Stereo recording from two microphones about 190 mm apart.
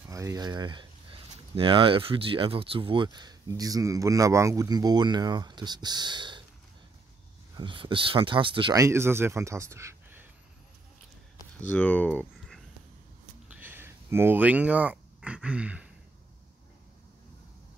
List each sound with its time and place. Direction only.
0.1 s speech: 15° right (ahead or behind)
7.5 s speech: 25° right (ahead or behind)
11.6 s speech: 10° left (ahead or behind)
13.5 s a sound: 10° right (ahead or behind)